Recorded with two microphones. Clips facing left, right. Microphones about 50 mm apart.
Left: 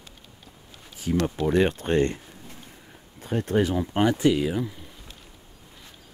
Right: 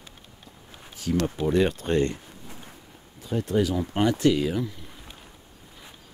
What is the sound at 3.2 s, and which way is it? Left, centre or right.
Speech, left.